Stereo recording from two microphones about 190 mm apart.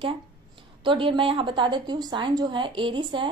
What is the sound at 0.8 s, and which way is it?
A woman's voice, 25° right (ahead or behind).